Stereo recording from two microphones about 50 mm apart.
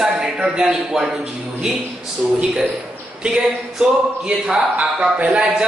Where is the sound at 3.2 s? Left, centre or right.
Centre.